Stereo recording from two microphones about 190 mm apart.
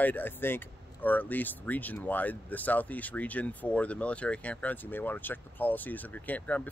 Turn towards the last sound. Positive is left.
turn(degrees=10)  # may be behind; listen again after turning